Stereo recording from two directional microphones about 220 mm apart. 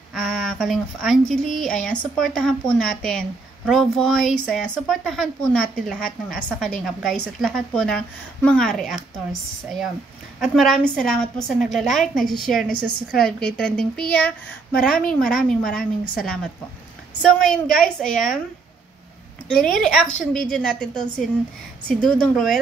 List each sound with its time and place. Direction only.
0.1 s a woman's voice: centre (ahead or behind)
10.4 s a woman's voice: centre (ahead or behind)
19.6 s a woman's voice: centre (ahead or behind)